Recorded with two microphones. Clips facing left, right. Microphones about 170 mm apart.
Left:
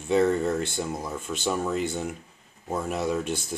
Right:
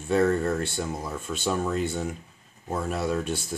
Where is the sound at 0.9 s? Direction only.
5° right (ahead or behind).